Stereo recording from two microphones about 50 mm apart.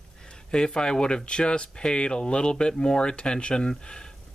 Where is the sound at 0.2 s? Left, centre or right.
Centre.